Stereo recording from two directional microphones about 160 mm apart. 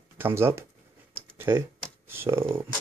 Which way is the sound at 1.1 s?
15° right (ahead or behind).